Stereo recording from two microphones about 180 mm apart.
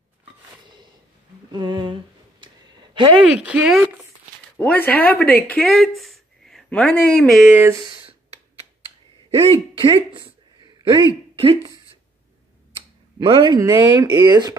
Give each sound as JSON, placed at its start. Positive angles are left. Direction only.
{"t": 1.5, "sound": "humming", "side_deg": -25}
{"t": 2.4, "sound": "a sound", "side_deg": -25}
{"t": 3.3, "sound": "speech", "side_deg": -5}
{"t": 4.6, "sound": "speech", "side_deg": 10}
{"t": 7.3, "sound": "speech", "side_deg": -5}
{"t": 7.8, "sound": "clicking", "side_deg": -30}
{"t": 9.3, "sound": "a sound", "side_deg": -30}
{"t": 11.3, "sound": "speech", "side_deg": -30}
{"t": 12.7, "sound": "tick-tock", "side_deg": -30}
{"t": 13.7, "sound": "speech", "side_deg": -15}